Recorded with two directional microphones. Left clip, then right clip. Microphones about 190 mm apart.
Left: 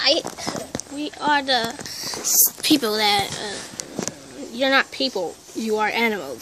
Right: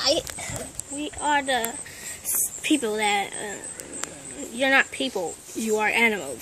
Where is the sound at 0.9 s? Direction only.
15° left (ahead or behind).